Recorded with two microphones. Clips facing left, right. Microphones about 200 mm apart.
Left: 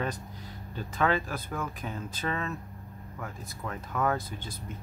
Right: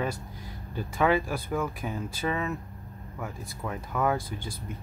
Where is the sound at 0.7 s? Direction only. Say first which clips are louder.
Right 3 dB; 10° right (ahead or behind).